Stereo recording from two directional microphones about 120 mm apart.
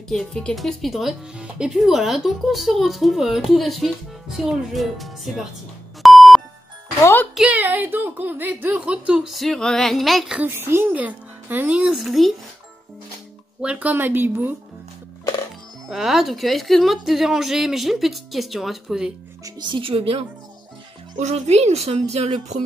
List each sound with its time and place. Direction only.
0.1 s speech: 5° left (ahead or behind)
6.0 s beep: centre (ahead or behind)
7.0 s speech: 20° left (ahead or behind)
7.3 s speech: 10° right (ahead or behind)
10.4 s speech: 20° right (ahead or behind); by 12.4 s centre (ahead or behind)
13.6 s speech: 10° right (ahead or behind)
15.9 s speech: 5° right (ahead or behind)
19.4 s speech: 40° right (ahead or behind)
21.2 s a woman's voice: 65° right (ahead or behind)